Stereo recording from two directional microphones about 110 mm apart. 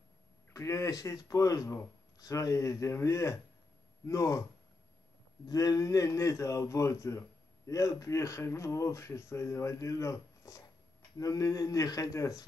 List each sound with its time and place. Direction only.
0.5 s a man's voice: 30° left (ahead or behind)
5.5 s a man's voice: 35° left (ahead or behind)